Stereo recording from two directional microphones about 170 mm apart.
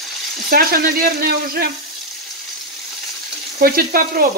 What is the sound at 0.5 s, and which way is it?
Sizzle, 60° right (ahead or behind).